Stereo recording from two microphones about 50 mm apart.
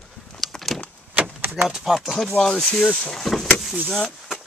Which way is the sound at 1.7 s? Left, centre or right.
Centre.